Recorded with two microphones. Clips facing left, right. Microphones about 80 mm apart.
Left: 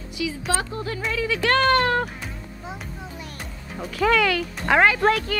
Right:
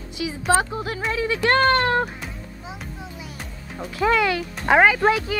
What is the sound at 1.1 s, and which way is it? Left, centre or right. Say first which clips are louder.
Speech: right 2 dB; right.